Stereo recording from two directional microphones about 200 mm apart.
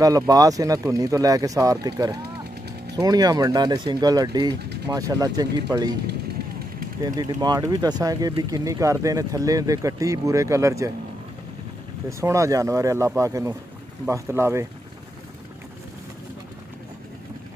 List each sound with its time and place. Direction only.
0.0 s speech: 15° right (ahead or behind)
7.2 s speech: 20° right (ahead or behind)
12.1 s speech: 15° right (ahead or behind)